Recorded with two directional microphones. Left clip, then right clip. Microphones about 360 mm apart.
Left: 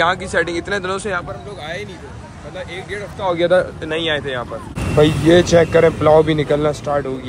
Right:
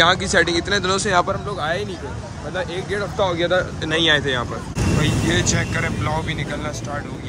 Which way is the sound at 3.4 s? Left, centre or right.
Centre.